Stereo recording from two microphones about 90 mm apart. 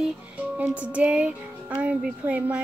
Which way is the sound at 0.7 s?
15° right (ahead or behind).